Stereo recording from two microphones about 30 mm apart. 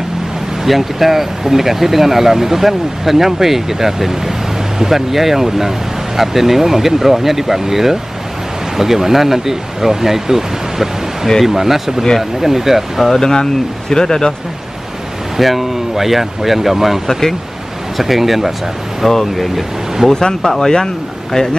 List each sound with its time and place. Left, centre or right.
0.7 s speech: centre
13.0 s speech: centre
13.3 s speech: left
15.3 s speech: centre
17.1 s speech: centre
17.9 s speech: centre
19.0 s speech: centre
20.1 s speech: left